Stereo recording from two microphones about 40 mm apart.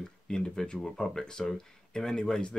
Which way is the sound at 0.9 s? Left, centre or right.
Centre.